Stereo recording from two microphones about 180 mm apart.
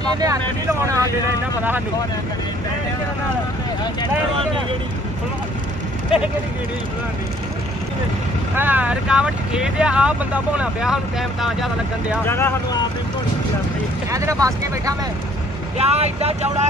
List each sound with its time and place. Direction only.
0.1 s speech: 20° right (ahead or behind)
8.5 s speech: 10° right (ahead or behind)
12.3 s speech: 15° left (ahead or behind)
14.1 s speech: 20° right (ahead or behind)
15.8 s speech: 35° right (ahead or behind)